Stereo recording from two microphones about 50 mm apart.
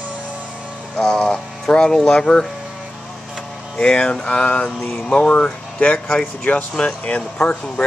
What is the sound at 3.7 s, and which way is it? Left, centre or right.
Speech, centre.